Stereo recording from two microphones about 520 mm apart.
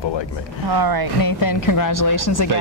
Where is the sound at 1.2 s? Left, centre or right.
Left.